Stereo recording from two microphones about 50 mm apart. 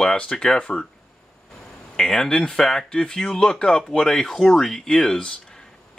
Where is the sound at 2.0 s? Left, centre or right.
Centre.